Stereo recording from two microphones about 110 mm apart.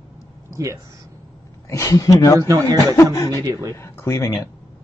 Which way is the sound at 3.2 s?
30° left (ahead or behind).